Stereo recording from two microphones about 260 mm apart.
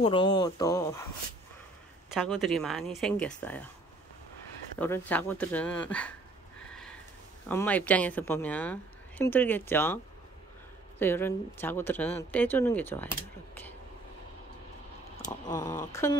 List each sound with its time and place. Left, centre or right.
0.0 s speech: centre
2.1 s speech: centre
4.7 s speech: centre
6.6 s a sound: centre
7.4 s speech: centre
11.0 s speech: centre
15.2 s speech: centre